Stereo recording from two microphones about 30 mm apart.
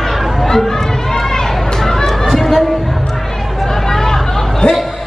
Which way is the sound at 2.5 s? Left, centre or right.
Centre.